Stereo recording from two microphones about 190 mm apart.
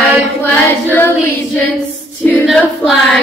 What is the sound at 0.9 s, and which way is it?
Child singing, 10° left (ahead or behind).